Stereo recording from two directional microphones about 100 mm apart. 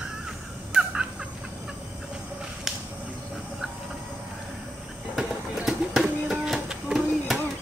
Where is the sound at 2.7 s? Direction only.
5° right (ahead or behind).